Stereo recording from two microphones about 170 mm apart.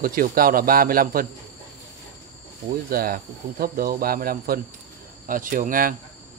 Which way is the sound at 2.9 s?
60° right (ahead or behind).